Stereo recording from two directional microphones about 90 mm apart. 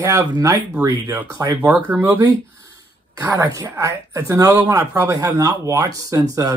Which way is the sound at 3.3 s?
35° right (ahead or behind).